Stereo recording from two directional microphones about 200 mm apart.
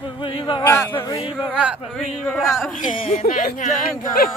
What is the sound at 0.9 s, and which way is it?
Speech, 25° left (ahead or behind).